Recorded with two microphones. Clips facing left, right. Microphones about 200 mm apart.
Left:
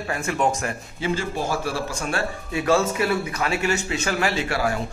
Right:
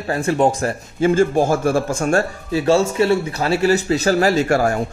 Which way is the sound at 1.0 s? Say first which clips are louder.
Right 11 dB; 50° right (ahead or behind).